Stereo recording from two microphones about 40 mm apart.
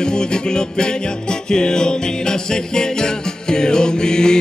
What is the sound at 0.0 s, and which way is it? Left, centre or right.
Music, centre.